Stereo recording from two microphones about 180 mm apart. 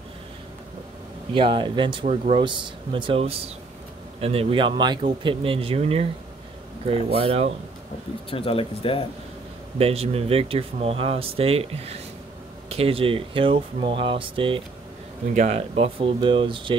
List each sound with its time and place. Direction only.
1.3 s speech: 25° right (ahead or behind)
8.3 s speech: 30° left (ahead or behind)
9.8 s speech: 35° right (ahead or behind)
15.3 s speech: 40° right (ahead or behind)